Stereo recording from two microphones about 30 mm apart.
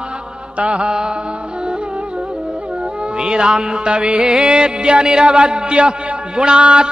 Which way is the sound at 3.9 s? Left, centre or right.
Right.